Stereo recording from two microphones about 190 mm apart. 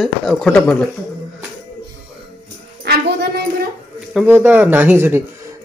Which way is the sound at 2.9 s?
60° right (ahead or behind).